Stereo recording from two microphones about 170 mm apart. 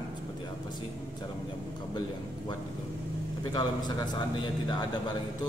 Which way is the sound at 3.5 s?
25° left (ahead or behind).